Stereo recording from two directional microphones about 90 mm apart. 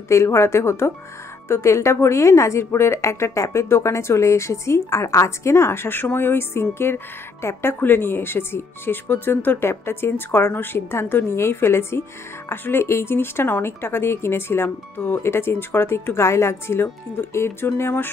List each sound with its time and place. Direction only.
0.1 s a woman's voice: 35° left (ahead or behind)